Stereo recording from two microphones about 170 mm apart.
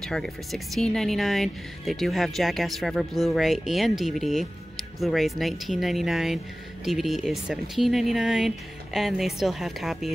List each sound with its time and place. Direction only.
0.0 s speech: 5° left (ahead or behind)